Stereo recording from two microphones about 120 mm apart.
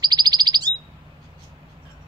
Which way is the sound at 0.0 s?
35° right (ahead or behind).